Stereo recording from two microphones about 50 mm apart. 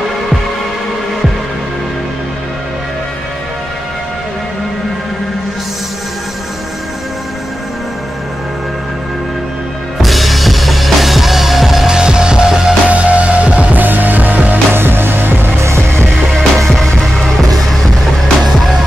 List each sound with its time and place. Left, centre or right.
10.0 s music: centre
12.8 s music: right
16.3 s music: centre